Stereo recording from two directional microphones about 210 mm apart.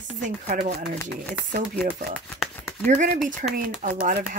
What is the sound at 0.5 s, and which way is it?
Speech, 40° right (ahead or behind).